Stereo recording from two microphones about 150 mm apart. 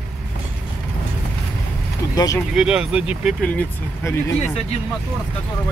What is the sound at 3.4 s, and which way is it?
Speech, 10° left (ahead or behind).